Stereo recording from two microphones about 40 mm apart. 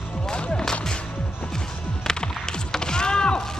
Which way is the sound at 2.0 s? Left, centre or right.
Centre.